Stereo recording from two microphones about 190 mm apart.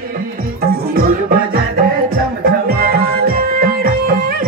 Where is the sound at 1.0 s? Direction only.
50° right (ahead or behind).